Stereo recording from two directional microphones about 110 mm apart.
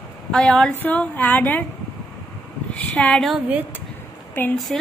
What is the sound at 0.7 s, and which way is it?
Speech, 15° left (ahead or behind).